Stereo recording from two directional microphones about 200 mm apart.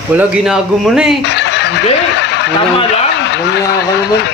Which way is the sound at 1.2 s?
60° left (ahead or behind).